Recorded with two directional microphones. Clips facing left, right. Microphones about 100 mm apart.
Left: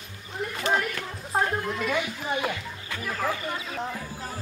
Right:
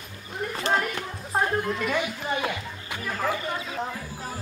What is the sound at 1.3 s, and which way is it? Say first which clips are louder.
Speech: right 1 dB; centre (ahead or behind).